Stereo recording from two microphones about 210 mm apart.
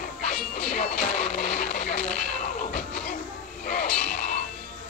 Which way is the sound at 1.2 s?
45° left (ahead or behind).